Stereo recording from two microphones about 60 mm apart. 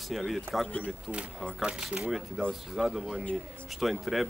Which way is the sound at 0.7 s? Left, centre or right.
Left.